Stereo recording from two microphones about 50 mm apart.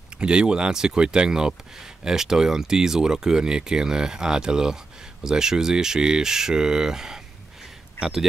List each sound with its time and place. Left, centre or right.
0.2 s speech: centre